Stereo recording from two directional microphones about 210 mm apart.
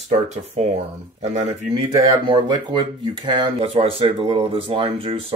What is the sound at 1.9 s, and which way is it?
Speech, 25° right (ahead or behind).